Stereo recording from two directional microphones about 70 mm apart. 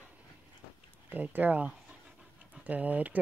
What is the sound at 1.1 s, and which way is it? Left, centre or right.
Speech, right.